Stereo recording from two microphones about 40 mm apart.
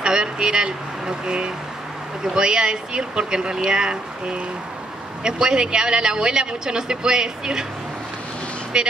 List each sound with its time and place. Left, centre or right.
0.0 s speech: centre
5.2 s speech: centre
8.7 s speech: centre